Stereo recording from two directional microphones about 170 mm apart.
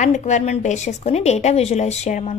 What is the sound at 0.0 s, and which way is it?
A woman's voice, 45° left (ahead or behind).